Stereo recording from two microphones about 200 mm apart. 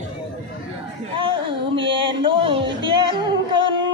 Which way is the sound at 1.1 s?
25° right (ahead or behind).